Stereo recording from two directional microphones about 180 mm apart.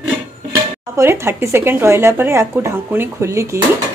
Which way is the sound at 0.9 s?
15° right (ahead or behind).